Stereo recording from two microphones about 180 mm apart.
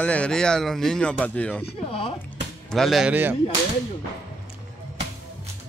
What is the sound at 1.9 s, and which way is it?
Speech, 30° left (ahead or behind).